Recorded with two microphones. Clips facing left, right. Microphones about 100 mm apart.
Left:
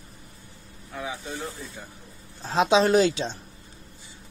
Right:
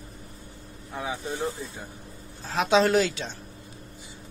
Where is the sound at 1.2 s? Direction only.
20° right (ahead or behind).